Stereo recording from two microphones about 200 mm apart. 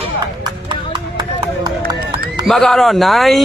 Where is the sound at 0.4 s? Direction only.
20° right (ahead or behind).